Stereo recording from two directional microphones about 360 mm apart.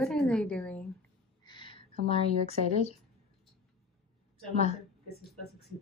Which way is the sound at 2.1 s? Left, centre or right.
Centre.